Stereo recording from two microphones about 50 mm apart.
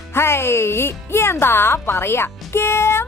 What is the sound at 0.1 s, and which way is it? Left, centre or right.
Speech, left.